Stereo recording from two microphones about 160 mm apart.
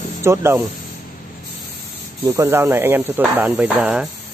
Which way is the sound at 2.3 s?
15° right (ahead or behind).